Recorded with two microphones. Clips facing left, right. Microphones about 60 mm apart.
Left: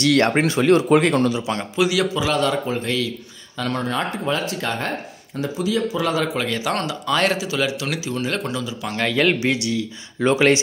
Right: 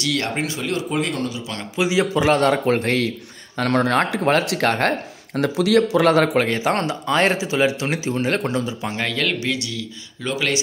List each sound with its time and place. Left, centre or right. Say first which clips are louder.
0.0 s speech: left 6 dB; left
1.8 s a man's voice: right 1 dB; right
2.1 s speech: right 3 dB; right
2.6 s a man's voice: right 4 dB; right
9.1 s a man's voice: left 7 dB; left
10.2 s speech: left 7 dB; left